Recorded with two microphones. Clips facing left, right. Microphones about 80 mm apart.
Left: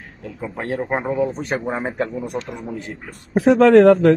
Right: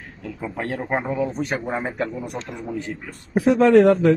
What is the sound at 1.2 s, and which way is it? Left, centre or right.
Speech, left.